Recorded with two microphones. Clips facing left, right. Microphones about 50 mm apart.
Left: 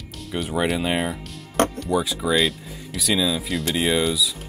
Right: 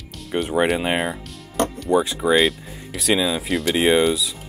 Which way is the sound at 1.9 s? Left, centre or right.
Right.